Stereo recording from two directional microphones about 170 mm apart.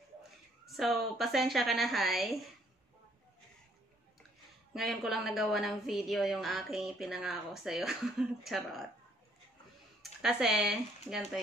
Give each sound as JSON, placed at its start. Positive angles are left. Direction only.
{"t": 0.7, "sound": "a woman's voice", "side_deg": 0}
{"t": 4.7, "sound": "a woman's voice", "side_deg": 0}
{"t": 10.2, "sound": "a woman's voice", "side_deg": -5}